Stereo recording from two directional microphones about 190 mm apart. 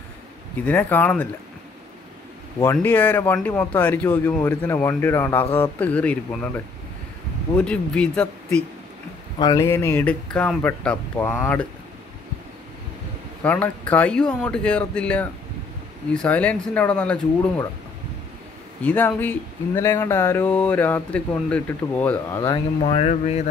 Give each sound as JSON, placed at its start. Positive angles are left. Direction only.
{"t": 0.7, "sound": "speech", "side_deg": 10}
{"t": 2.6, "sound": "speech", "side_deg": 10}
{"t": 9.4, "sound": "speech", "side_deg": 20}
{"t": 13.4, "sound": "speech", "side_deg": 5}
{"t": 18.8, "sound": "speech", "side_deg": 10}
{"t": 22.8, "sound": "speech", "side_deg": 35}